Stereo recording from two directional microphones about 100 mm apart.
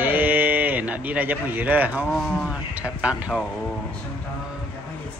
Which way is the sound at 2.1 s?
5° left (ahead or behind).